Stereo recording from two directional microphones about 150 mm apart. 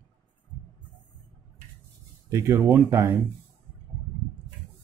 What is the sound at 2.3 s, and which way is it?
Speech, 15° right (ahead or behind).